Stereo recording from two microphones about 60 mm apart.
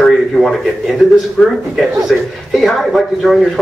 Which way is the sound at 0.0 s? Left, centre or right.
Centre.